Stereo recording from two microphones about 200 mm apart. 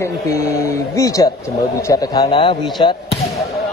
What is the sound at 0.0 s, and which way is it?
A man's voice, 15° left (ahead or behind).